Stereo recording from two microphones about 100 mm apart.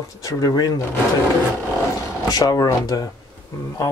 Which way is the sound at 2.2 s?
40° left (ahead or behind).